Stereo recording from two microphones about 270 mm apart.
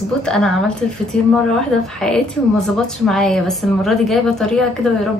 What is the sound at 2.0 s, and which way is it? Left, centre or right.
A woman's voice, centre.